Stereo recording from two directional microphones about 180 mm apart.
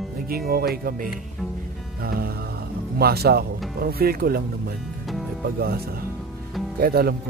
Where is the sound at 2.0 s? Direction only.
55° right (ahead or behind).